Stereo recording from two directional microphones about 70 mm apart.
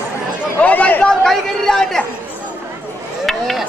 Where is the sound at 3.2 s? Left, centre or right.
Centre.